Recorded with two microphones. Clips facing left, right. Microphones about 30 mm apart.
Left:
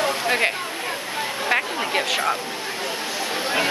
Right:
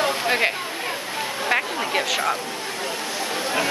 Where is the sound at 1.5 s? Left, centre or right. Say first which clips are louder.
Even; centre.